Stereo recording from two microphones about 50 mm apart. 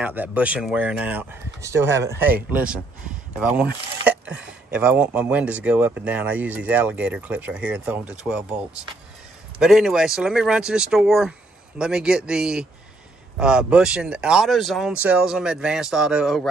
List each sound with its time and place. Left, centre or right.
0.0 s speech: right
1.6 s speech: right
2.1 s speech: right
3.3 s speech: centre
4.7 s speech: right
8.2 s speech: centre
14.4 s speech: centre
15.0 s speech: right
15.2 s speech: centre